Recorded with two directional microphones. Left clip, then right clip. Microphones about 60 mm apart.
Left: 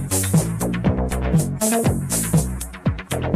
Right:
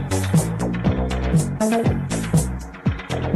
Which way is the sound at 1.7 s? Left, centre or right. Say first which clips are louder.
Left 2 dB; right.